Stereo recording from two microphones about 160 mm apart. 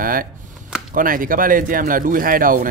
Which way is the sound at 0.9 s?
60° right (ahead or behind).